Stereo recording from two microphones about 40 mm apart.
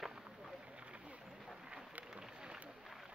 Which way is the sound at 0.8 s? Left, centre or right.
Right.